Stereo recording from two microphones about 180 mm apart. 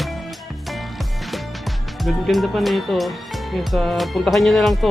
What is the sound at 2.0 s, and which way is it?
Speech, centre (ahead or behind).